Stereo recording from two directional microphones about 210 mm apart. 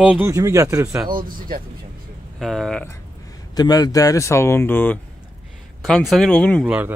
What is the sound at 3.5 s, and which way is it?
Speech, 20° left (ahead or behind).